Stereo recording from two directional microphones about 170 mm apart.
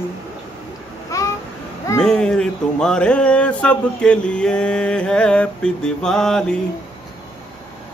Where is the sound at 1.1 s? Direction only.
20° left (ahead or behind).